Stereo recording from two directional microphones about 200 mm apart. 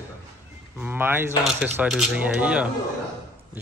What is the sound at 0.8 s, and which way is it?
Speech, 10° right (ahead or behind).